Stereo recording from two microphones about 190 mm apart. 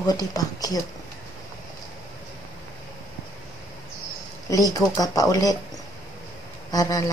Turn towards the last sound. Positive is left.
turn(degrees=20)  # may be behind; listen again after turning